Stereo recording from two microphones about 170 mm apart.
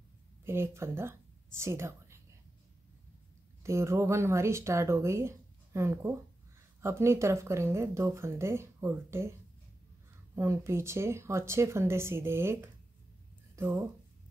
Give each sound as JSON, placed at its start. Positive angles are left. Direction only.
{"t": 0.5, "sound": "a woman's voice", "side_deg": -15}
{"t": 3.6, "sound": "speech", "side_deg": -15}
{"t": 10.3, "sound": "speech", "side_deg": -15}